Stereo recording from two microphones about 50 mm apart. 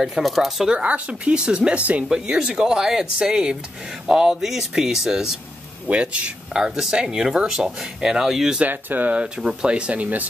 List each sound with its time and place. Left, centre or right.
0.0 s speech: centre
0.7 s speech: right
1.8 s speech: right
2.2 s speech: centre
5.9 s speech: right
6.6 s speech: centre
8.6 s speech: right
9.1 s speech: centre